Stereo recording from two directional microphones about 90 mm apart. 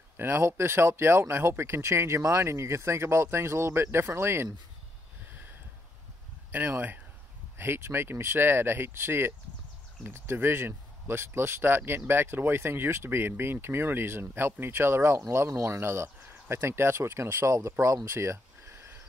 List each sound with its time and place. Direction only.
0.2 s speech: 25° right (ahead or behind)
6.5 s speech: 20° right (ahead or behind)